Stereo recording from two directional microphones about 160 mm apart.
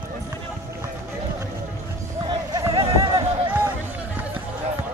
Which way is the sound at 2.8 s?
20° right (ahead or behind).